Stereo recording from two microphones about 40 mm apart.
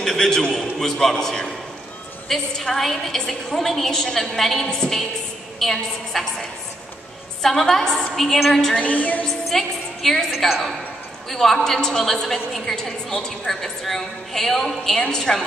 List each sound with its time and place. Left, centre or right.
0.0 s a man's voice: centre
7.4 s a woman's voice: centre
8.7 s a woman's voice: left
9.5 s a woman's voice: centre